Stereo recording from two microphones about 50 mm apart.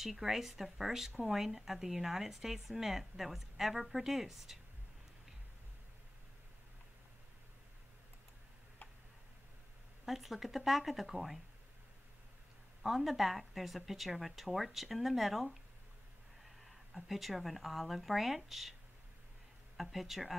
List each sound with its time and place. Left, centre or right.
0.0 s speech: centre
10.0 s a woman's voice: centre
12.8 s a woman's voice: centre
19.8 s a woman's voice: centre